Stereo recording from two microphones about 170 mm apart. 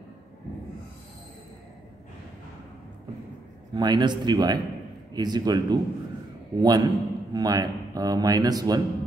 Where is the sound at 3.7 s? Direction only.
25° right (ahead or behind).